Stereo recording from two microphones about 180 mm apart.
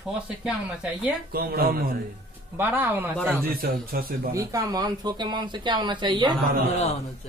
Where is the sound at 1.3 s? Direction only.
55° right (ahead or behind).